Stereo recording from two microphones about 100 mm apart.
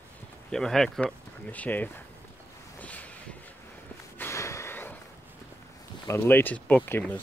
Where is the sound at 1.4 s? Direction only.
15° left (ahead or behind).